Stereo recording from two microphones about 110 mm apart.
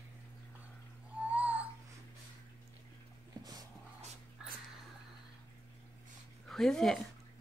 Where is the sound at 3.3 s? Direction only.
40° right (ahead or behind).